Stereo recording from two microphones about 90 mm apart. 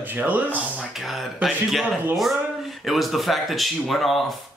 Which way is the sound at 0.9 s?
Centre (ahead or behind).